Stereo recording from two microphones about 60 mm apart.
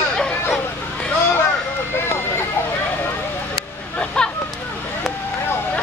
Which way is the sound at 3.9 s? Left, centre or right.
Centre.